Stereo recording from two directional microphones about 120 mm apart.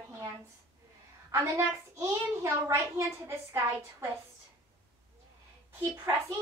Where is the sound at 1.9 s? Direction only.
20° right (ahead or behind).